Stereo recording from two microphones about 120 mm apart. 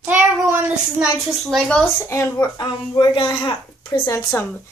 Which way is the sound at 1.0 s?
5° right (ahead or behind).